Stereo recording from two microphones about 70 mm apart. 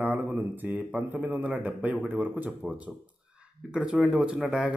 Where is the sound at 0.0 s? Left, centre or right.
Right.